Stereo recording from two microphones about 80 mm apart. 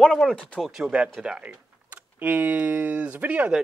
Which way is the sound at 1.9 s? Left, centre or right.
Right.